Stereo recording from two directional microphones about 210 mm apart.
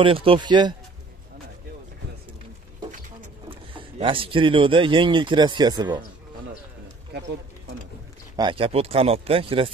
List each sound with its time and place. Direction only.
0.0 s speech: 25° right (ahead or behind)
3.4 s speech: 25° right (ahead or behind)
8.4 s speech: 25° right (ahead or behind)